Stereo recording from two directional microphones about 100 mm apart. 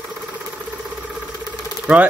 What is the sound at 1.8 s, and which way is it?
Engine, 10° right (ahead or behind).